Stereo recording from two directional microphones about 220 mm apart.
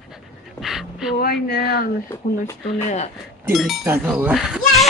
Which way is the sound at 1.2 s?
40° left (ahead or behind).